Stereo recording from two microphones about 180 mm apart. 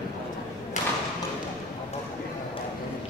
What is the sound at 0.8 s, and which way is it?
Thump, 40° left (ahead or behind).